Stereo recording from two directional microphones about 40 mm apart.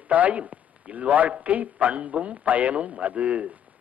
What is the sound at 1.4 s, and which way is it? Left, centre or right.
A man's voice, right.